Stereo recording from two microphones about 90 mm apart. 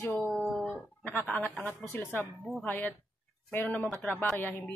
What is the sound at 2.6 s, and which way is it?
Mantra, 15° left (ahead or behind).